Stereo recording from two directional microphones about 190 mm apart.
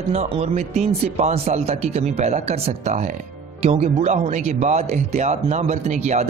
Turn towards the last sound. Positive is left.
turn(degrees=-35)  # may be behind; listen again after turning